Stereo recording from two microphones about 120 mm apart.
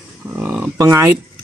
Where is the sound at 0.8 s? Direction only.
25° right (ahead or behind).